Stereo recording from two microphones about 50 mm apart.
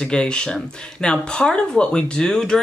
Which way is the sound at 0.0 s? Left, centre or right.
Centre.